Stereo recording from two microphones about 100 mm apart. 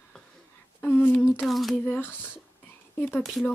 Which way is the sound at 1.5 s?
Centre (ahead or behind).